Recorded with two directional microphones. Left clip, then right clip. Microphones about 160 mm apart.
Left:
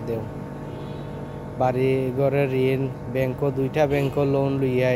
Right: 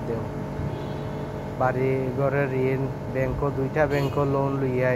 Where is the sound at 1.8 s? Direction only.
75° left (ahead or behind).